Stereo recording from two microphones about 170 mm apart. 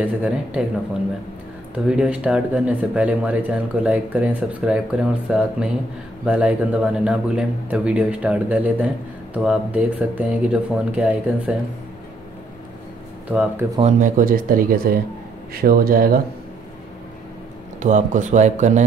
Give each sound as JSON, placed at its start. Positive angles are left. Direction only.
{"t": 0.0, "sound": "a man's voice", "side_deg": -10}
{"t": 1.9, "sound": "a man's voice", "side_deg": -5}
{"t": 13.3, "sound": "a man's voice", "side_deg": -10}
{"t": 13.7, "sound": "speech", "side_deg": -45}
{"t": 17.8, "sound": "speech", "side_deg": -45}